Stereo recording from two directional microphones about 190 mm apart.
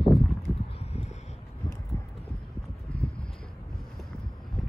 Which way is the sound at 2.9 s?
5° left (ahead or behind).